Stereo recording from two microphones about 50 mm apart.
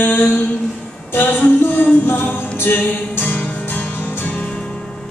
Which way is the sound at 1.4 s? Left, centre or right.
Left.